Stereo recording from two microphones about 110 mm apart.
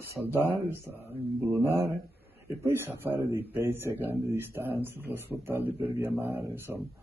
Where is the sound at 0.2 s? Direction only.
20° right (ahead or behind).